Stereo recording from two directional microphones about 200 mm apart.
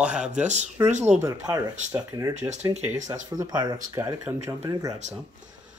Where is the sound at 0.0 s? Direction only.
5° right (ahead or behind).